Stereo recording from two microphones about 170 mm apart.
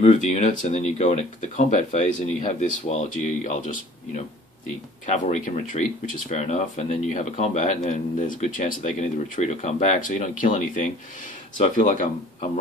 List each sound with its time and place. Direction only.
0.0 s speech: 40° left (ahead or behind)